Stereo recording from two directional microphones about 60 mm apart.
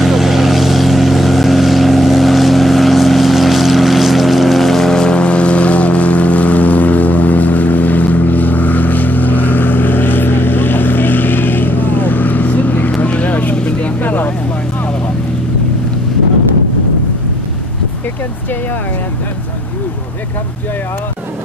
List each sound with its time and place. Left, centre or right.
0.0 s vehicle: centre; by 14.3 s left